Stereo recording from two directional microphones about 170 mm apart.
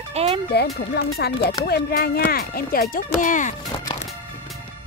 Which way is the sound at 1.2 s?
70° left (ahead or behind).